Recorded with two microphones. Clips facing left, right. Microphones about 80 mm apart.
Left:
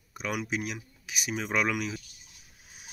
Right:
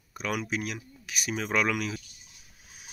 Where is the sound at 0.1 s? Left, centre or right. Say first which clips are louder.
Right 1 dB; centre.